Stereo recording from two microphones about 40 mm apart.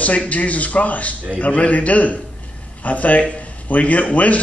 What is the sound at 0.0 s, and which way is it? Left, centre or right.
A man's voice, left.